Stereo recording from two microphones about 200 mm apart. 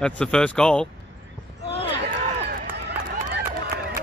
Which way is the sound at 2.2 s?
35° right (ahead or behind).